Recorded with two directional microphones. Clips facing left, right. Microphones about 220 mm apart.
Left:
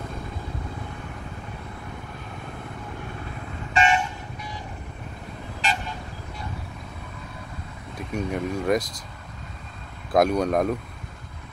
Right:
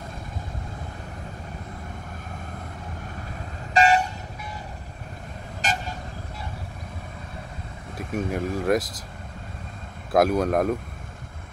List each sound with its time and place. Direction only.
3.7 s vehicle: 35° right (ahead or behind)
5.6 s vehicle: 45° right (ahead or behind)
8.0 s speech: centre (ahead or behind)
10.1 s speech: centre (ahead or behind)